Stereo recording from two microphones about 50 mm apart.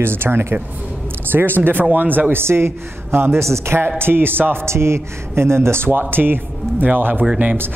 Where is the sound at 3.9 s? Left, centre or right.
Right.